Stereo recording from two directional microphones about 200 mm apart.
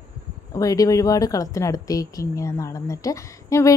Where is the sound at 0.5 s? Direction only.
15° left (ahead or behind).